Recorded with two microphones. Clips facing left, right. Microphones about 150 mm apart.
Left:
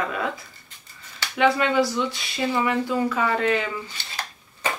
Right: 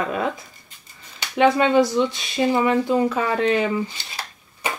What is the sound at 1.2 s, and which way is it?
A woman's voice, 25° right (ahead or behind).